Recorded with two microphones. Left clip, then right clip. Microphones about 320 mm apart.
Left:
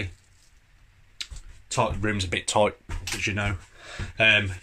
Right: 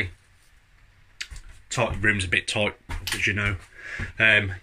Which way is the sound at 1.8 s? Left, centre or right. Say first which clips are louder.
Right 4 dB; centre.